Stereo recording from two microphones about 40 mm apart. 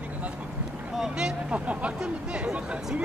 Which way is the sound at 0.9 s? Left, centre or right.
Centre.